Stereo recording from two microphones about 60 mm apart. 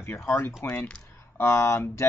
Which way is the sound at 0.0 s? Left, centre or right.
Left.